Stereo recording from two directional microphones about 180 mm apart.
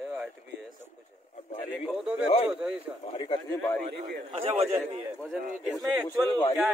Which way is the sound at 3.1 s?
25° left (ahead or behind).